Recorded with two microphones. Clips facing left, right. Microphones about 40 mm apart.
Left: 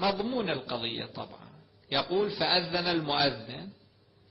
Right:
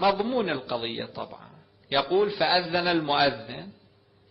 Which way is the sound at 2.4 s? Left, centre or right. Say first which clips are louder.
Right 5 dB; centre.